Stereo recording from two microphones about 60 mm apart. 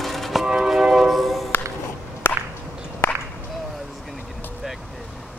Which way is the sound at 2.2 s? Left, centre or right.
Left.